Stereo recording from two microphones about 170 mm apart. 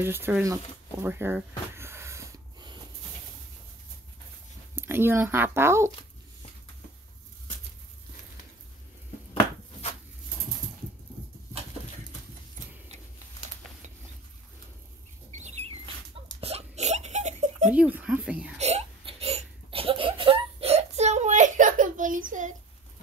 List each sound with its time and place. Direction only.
0.0 s speech: 15° right (ahead or behind)
1.8 s snort: 15° right (ahead or behind)
4.7 s speech: 15° right (ahead or behind)
15.3 s a sound: 40° right (ahead or behind)
17.6 s a sound: 10° right (ahead or behind)
18.6 s laughter: 40° right (ahead or behind)